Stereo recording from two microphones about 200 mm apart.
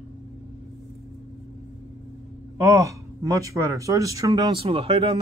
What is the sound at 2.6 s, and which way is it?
Speech, 15° right (ahead or behind).